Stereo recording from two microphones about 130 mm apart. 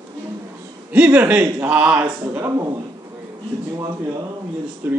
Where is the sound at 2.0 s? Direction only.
25° right (ahead or behind).